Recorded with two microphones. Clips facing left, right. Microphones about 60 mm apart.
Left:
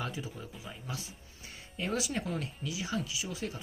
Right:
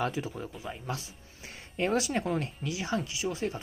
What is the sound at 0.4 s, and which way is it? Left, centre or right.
Speech, right.